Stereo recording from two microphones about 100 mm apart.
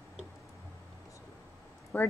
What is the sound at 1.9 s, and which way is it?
Speech, 15° left (ahead or behind).